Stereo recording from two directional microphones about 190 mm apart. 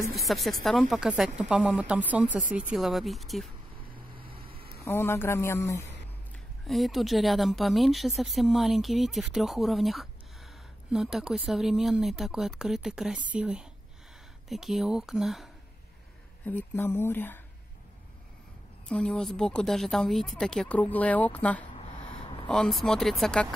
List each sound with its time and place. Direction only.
0.1 s speech: centre (ahead or behind)
3.7 s vehicle: 25° right (ahead or behind)
4.2 s vehicle: 50° right (ahead or behind)
4.8 s speech: 10° left (ahead or behind)
6.7 s speech: centre (ahead or behind)
16.4 s speech: 10° left (ahead or behind)
18.9 s speech: 5° left (ahead or behind)